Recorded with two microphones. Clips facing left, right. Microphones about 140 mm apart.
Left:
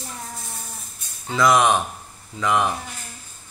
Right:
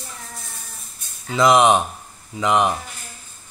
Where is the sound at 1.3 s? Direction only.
20° right (ahead or behind).